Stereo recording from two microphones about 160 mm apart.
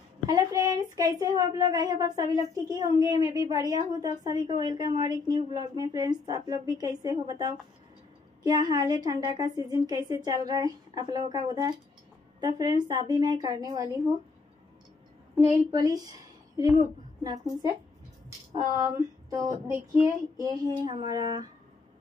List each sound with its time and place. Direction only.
0.3 s a woman's voice: 25° right (ahead or behind)
15.3 s a woman's voice: 20° right (ahead or behind)
19.7 s a woman's voice: 15° right (ahead or behind)